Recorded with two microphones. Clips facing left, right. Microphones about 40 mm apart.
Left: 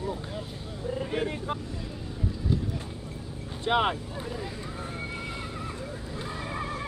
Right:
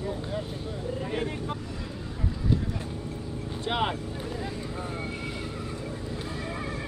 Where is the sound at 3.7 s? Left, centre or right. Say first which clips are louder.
Left 3 dB; centre.